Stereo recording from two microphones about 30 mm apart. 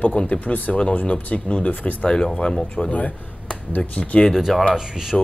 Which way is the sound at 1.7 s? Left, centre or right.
Left.